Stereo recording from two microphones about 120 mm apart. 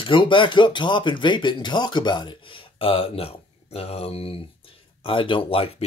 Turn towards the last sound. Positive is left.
turn(degrees=50)  # may be behind; listen again after turning